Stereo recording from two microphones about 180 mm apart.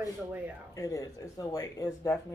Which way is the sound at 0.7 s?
20° left (ahead or behind).